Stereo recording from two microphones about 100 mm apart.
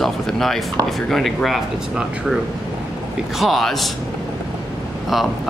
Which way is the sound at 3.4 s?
Centre (ahead or behind).